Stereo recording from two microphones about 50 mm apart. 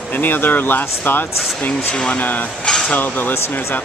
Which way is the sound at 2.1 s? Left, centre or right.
Left.